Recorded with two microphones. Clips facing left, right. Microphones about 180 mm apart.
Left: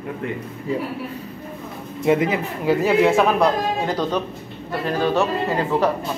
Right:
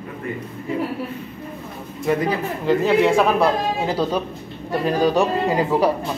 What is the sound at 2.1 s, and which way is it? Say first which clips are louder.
Speech: left 2 dB; 20° left (ahead or behind).